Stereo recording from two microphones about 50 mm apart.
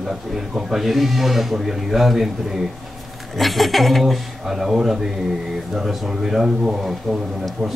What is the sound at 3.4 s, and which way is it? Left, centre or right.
A man's voice, centre.